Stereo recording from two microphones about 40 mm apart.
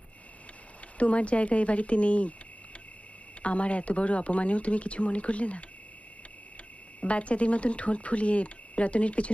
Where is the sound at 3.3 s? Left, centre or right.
Left.